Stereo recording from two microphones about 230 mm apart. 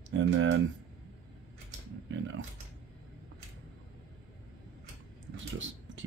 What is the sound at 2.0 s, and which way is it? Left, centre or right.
Speech, right.